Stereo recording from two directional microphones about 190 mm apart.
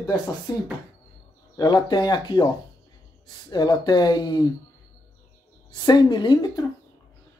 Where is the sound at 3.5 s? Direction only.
20° left (ahead or behind).